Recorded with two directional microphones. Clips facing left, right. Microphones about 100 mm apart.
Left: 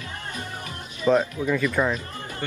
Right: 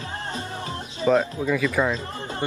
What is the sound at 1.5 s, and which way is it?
Speech, centre (ahead or behind).